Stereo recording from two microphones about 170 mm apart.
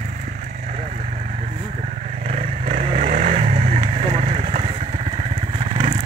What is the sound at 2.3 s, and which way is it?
Vehicle, 40° right (ahead or behind).